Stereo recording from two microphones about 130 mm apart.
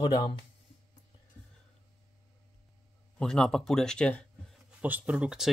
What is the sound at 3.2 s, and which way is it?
Speech, 5° left (ahead or behind).